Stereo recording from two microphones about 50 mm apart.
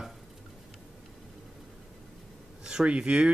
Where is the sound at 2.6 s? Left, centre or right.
Centre.